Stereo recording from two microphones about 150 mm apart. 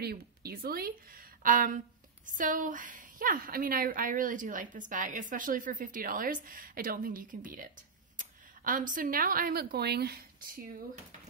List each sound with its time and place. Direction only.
0.0 s a woman's voice: 90° right